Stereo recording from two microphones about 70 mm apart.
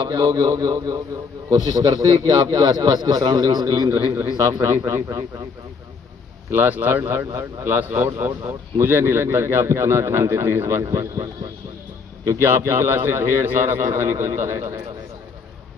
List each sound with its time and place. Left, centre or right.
0.1 s speech: right
0.4 s a man's voice: right
3.9 s a man's voice: right
6.5 s a man's voice: right
12.4 s a man's voice: right